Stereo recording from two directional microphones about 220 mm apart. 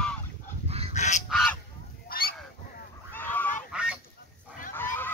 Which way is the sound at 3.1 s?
10° left (ahead or behind).